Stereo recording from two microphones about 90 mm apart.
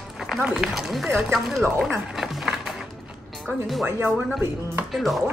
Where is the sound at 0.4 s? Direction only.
10° right (ahead or behind).